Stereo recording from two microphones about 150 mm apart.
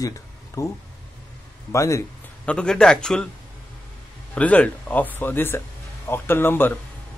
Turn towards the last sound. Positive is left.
turn(degrees=15)  # may be behind; listen again after turning